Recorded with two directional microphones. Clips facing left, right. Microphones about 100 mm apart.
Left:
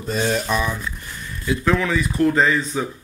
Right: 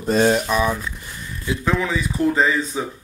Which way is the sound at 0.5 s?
5° right (ahead or behind).